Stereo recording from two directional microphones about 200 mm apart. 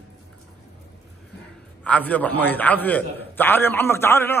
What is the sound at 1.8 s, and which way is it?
A man's voice, 5° left (ahead or behind).